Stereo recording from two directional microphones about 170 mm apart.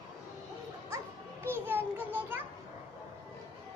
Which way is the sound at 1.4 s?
15° right (ahead or behind).